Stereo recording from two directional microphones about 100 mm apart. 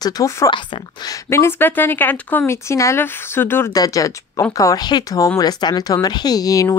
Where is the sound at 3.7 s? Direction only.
35° left (ahead or behind).